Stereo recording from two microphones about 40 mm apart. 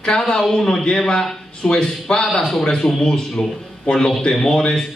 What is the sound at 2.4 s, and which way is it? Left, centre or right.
A man's voice, centre.